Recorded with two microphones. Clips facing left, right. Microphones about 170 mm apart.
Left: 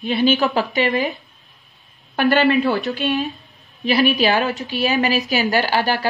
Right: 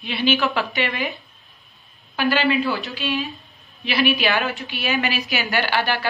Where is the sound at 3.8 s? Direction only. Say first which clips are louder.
Left 4 dB; 40° left (ahead or behind).